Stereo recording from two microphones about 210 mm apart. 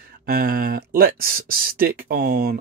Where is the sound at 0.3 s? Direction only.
45° right (ahead or behind).